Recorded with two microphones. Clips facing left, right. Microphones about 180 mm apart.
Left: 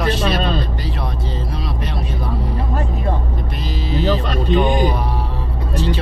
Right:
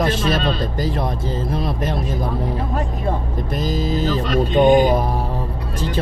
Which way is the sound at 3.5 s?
45° right (ahead or behind).